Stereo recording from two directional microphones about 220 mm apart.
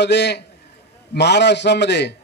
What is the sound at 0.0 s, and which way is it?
A man's voice, 50° left (ahead or behind).